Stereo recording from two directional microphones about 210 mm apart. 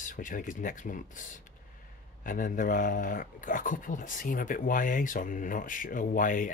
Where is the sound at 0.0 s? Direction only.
40° left (ahead or behind).